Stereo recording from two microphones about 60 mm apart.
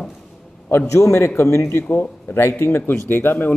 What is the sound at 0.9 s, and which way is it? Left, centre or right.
Speech, left.